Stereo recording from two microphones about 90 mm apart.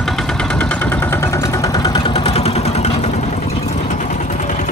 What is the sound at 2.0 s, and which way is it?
Vehicle, 85° left.